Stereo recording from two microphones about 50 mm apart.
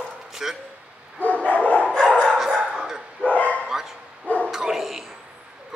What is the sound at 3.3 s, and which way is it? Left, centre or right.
Dog, left.